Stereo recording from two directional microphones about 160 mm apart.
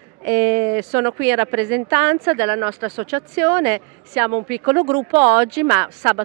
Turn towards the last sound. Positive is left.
turn(degrees=-15)  # may be behind; listen again after turning